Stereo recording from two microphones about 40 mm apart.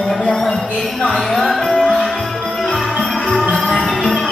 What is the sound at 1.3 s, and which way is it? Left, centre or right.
Music, centre.